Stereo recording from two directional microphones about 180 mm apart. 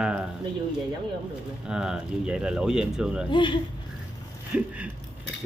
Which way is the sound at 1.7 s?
5° right (ahead or behind).